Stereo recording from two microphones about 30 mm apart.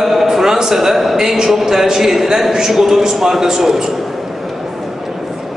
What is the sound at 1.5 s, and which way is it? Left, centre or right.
A man's voice, centre.